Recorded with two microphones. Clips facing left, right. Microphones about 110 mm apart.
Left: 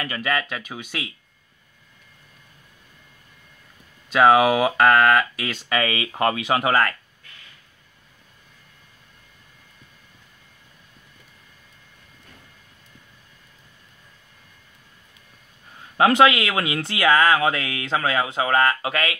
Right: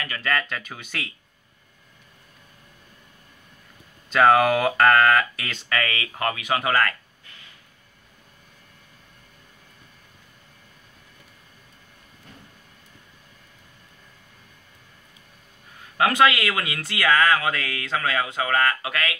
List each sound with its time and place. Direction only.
0.2 s speech: 10° left (ahead or behind)
4.1 s speech: 5° left (ahead or behind)
5.8 s speech: 20° left (ahead or behind)
16.0 s speech: 25° left (ahead or behind)